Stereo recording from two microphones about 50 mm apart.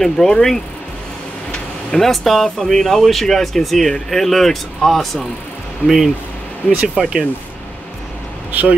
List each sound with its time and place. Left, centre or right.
0.0 s speech: centre
1.9 s speech: centre
6.6 s speech: left
7.0 s speech: centre
8.5 s speech: right